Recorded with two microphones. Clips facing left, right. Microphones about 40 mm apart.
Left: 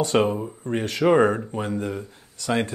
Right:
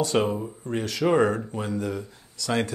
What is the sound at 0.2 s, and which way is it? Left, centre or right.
Speech, left.